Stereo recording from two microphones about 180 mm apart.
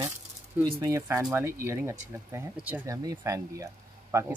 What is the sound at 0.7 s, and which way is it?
Speech, 15° right (ahead or behind).